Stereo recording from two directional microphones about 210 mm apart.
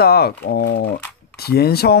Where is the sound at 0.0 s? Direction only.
50° left (ahead or behind).